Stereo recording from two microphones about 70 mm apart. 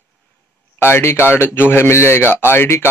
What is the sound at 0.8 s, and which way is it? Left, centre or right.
Speech, left.